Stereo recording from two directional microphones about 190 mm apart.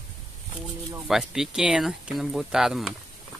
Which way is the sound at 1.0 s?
Centre (ahead or behind).